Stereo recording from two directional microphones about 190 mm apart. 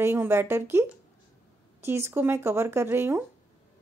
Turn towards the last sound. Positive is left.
turn(degrees=-10)  # may be behind; listen again after turning